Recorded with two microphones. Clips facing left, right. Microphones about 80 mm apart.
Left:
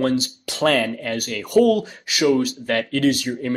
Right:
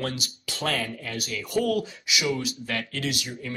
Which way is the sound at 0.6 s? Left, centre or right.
Left.